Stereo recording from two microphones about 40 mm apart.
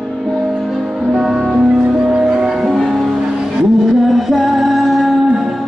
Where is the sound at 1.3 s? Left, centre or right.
Centre.